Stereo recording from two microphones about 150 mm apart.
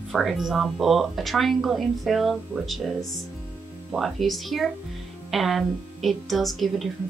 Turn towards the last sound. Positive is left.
turn(degrees=0)  # may be behind; listen again after turning